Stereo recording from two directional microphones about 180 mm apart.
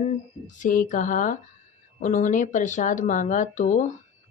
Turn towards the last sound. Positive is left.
turn(degrees=45)  # may be behind; listen again after turning